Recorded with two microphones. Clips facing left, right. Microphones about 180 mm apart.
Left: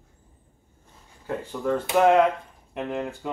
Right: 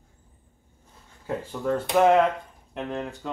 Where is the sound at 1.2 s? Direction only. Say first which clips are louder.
Even; 5° right (ahead or behind).